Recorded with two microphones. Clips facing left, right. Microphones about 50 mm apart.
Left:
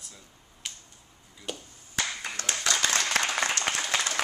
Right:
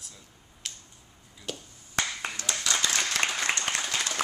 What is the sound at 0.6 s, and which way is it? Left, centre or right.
Finger snapping, centre.